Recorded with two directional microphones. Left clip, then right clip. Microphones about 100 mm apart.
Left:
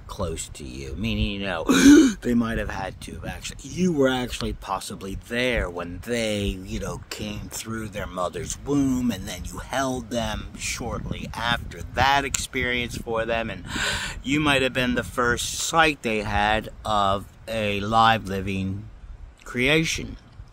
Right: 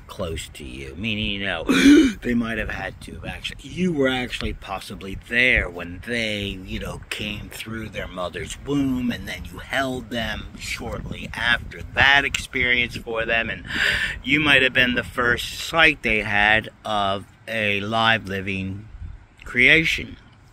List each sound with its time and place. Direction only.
0.2 s speech: 15° left (ahead or behind); by 5.9 s 35° left (ahead or behind)
6.0 s speech: 70° left (ahead or behind)
6.8 s speech: 20° left (ahead or behind)
7.5 s speech: 55° left (ahead or behind)
9.7 s speech: 35° left (ahead or behind)
11.1 s speech: 25° left (ahead or behind)